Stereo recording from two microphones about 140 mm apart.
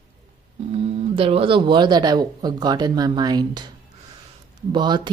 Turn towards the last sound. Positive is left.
turn(degrees=-30)  # may be behind; listen again after turning